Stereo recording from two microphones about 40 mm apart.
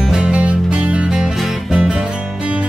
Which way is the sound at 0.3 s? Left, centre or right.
Right.